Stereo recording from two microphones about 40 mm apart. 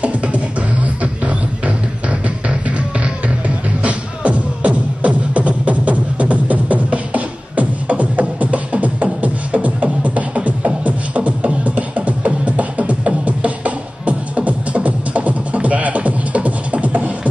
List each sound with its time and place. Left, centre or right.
3.4 s music: right